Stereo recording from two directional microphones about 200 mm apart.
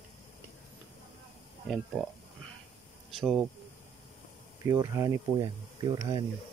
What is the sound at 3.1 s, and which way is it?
Speech, centre (ahead or behind).